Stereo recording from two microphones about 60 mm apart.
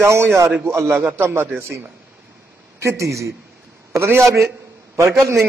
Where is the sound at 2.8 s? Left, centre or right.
Right.